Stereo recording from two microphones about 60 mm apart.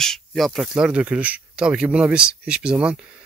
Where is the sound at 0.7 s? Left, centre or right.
Centre.